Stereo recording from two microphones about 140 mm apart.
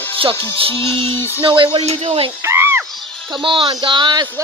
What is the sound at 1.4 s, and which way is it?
Speech, 35° right (ahead or behind).